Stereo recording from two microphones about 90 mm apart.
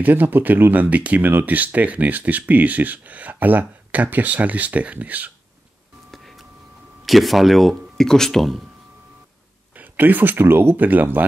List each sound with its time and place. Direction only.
0.0 s speech: 20° right (ahead or behind)
6.1 s a sound: centre (ahead or behind)
7.1 s speech: centre (ahead or behind)
9.8 s speech: 20° right (ahead or behind)